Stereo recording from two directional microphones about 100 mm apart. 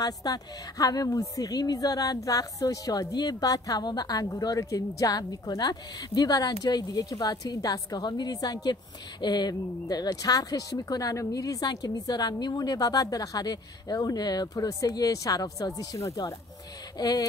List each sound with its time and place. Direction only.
0.0 s a woman's voice: 40° left (ahead or behind)